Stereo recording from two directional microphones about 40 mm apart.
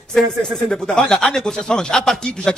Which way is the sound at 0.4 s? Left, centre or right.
Centre.